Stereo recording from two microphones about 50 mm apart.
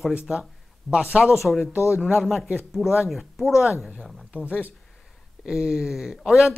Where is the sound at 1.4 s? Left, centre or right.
Centre.